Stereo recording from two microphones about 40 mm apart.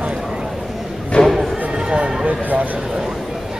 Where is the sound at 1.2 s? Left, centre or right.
Centre.